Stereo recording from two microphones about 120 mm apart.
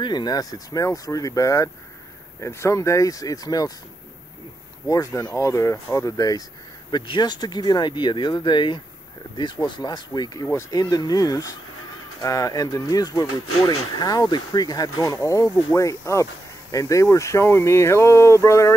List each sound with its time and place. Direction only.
0.0 s speech: 35° left (ahead or behind)
4.8 s speech: 25° left (ahead or behind)